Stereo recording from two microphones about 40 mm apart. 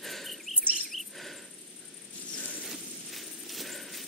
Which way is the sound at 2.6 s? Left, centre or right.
Centre.